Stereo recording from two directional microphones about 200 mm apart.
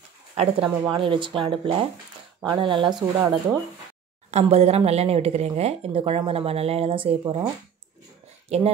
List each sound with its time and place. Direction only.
0.4 s speech: 25° right (ahead or behind)
4.3 s a woman's voice: 30° right (ahead or behind)